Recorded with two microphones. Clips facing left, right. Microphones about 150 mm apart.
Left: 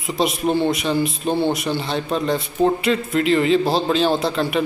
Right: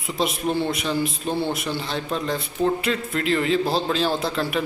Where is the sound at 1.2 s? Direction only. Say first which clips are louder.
Left 6 dB; 30° left (ahead or behind).